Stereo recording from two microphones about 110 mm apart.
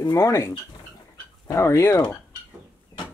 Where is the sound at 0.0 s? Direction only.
30° left (ahead or behind).